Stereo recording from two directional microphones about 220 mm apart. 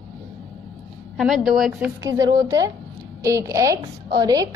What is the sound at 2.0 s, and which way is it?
A woman's voice, 15° right (ahead or behind).